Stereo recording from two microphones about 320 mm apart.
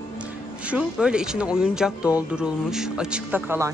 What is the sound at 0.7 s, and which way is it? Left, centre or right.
Speech, centre.